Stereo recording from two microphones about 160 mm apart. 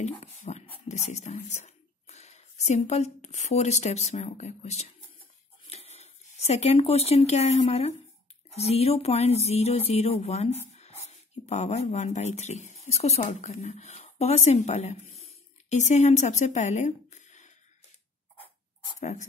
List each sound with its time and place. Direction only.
0.0 s speech: 45° left (ahead or behind)
18.9 s speech: 50° left (ahead or behind)